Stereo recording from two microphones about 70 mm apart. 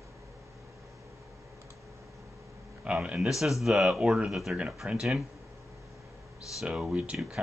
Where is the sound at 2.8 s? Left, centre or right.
Centre.